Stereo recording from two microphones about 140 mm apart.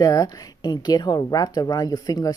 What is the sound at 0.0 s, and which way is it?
A woman's voice, 25° left (ahead or behind).